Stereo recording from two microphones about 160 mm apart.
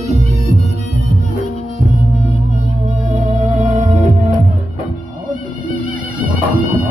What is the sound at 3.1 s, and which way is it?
Music, 45° right (ahead or behind).